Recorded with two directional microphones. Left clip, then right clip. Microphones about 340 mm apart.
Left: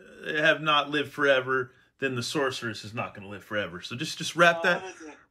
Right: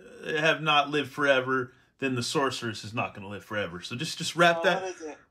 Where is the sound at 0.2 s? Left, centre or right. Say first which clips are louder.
Left 2 dB; centre.